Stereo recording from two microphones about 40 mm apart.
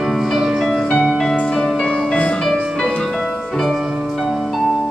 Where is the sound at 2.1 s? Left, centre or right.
Left.